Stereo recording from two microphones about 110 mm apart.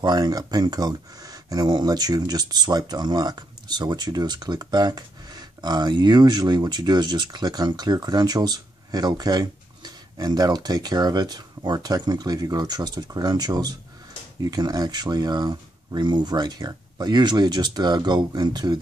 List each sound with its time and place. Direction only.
0.0 s speech: 35° right (ahead or behind)